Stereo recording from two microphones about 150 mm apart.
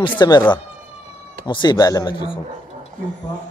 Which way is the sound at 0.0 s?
30° left (ahead or behind).